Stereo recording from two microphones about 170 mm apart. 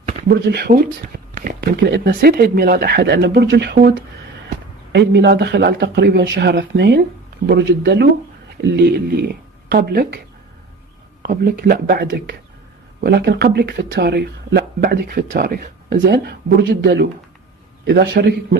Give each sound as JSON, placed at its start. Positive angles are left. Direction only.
{"t": 0.5, "sound": "speech", "side_deg": -70}
{"t": 1.3, "sound": "speech", "side_deg": -60}
{"t": 4.9, "sound": "a man's voice", "side_deg": -85}
{"t": 8.7, "sound": "speech", "side_deg": -75}
{"t": 11.2, "sound": "a man's voice", "side_deg": -65}